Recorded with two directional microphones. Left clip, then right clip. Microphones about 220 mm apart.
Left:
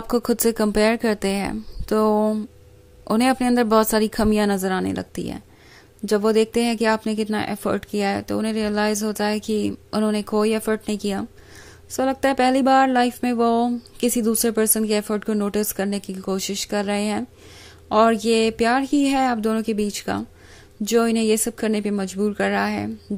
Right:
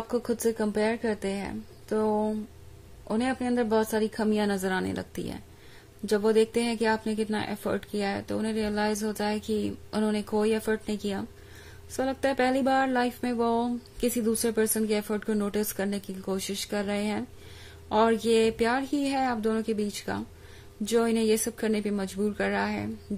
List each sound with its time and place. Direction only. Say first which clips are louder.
0.1 s a woman's voice: left 8 dB; 35° left (ahead or behind)